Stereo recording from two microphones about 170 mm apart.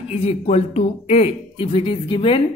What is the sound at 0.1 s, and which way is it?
Speech, 35° left (ahead or behind).